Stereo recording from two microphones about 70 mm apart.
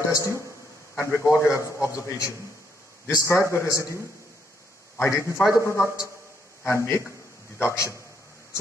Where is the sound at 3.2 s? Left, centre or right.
Left.